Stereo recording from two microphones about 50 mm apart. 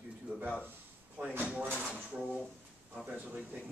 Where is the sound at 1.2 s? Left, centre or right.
Right.